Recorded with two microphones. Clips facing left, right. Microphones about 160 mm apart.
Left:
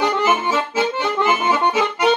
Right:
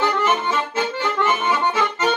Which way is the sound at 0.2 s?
10° left (ahead or behind).